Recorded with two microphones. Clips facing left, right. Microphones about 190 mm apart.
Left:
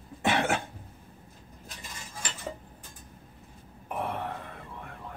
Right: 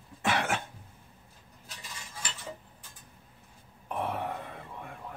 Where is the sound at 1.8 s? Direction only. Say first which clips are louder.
Left 2 dB; 50° left (ahead or behind).